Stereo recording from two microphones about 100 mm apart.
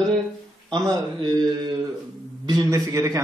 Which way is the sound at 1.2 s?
45° right (ahead or behind).